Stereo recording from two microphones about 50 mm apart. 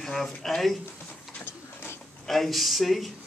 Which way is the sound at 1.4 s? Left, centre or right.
Left.